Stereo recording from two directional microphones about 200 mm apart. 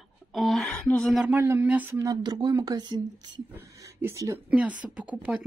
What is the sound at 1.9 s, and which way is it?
Speech, 20° right (ahead or behind).